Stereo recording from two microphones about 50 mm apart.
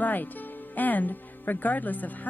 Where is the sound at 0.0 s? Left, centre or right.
Left.